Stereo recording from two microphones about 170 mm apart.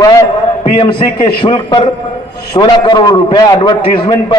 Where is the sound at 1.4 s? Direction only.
30° left (ahead or behind).